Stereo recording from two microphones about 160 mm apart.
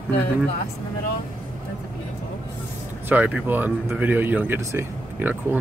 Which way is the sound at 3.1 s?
10° right (ahead or behind).